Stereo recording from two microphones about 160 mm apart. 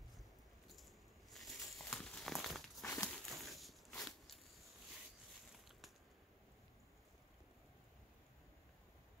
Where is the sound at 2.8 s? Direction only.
15° left (ahead or behind).